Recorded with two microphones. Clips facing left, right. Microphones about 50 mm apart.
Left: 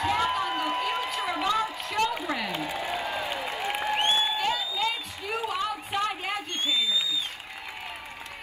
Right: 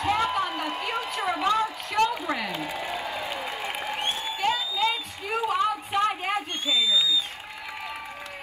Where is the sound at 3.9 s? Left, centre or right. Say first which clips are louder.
Left 5 dB; left.